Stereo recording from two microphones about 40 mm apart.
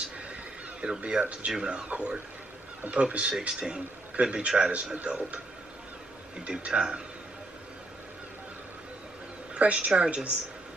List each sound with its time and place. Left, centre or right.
0.3 s a sound: right
1.6 s a man's voice: right
6.4 s speech: right
9.5 s speech: right